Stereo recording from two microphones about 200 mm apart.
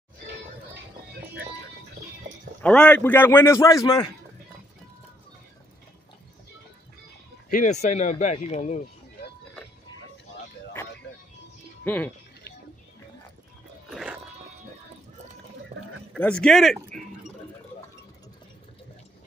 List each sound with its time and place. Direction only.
2.6 s a man's voice: 5° left (ahead or behind)
7.5 s speech: 35° left (ahead or behind)
11.8 s speech: 10° left (ahead or behind)
13.8 s biting: centre (ahead or behind)
15.7 s a sound: 35° right (ahead or behind)
16.1 s speech: 5° left (ahead or behind)